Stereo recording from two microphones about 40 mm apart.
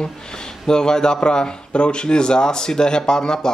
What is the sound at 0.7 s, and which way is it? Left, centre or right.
Speech, centre.